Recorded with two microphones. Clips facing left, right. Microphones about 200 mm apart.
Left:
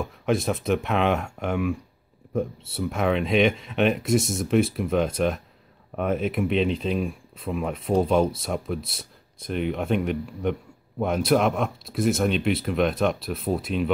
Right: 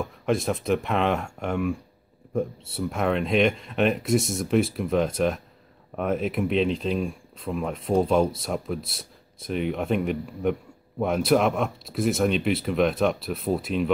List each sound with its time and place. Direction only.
0.0 s speech: centre (ahead or behind)